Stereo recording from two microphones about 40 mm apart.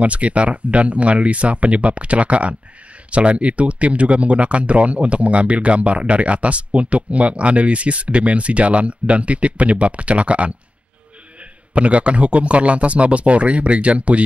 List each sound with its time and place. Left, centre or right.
0.0 s speech: right
11.7 s speech: right